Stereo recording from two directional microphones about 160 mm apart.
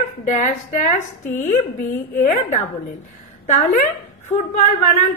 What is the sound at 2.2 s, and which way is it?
Speech, 45° left (ahead or behind).